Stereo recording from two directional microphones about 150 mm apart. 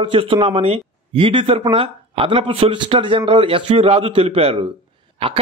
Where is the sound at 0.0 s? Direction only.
35° right (ahead or behind).